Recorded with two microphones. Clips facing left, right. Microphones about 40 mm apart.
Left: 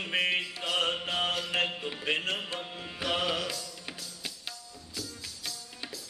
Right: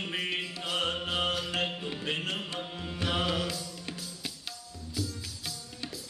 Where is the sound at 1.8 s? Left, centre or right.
Centre.